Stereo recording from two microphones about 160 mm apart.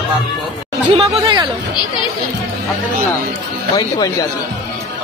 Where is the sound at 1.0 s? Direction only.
30° right (ahead or behind).